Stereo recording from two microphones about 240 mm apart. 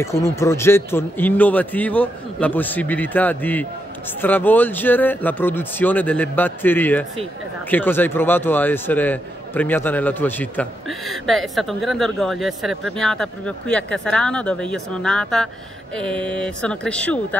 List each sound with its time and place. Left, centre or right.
0.0 s a man's voice: centre